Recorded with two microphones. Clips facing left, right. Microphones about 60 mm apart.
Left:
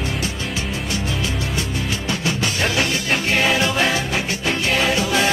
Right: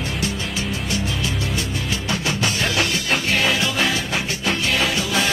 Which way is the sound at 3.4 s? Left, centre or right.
Left.